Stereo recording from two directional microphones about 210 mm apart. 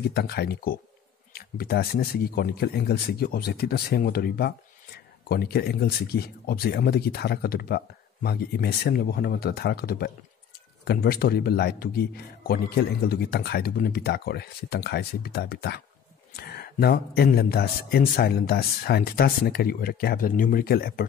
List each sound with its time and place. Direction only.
0.1 s speech: 50° left (ahead or behind)